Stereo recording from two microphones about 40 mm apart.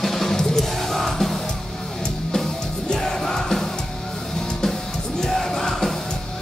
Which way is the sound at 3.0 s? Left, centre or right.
Centre.